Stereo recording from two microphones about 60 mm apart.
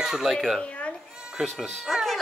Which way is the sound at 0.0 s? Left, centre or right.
Centre.